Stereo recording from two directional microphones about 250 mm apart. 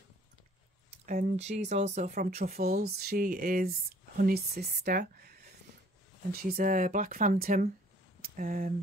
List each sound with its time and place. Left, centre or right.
1.0 s speech: right
6.5 s speech: right